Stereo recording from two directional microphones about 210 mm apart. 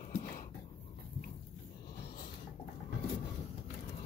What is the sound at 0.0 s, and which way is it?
Dog, 35° left (ahead or behind).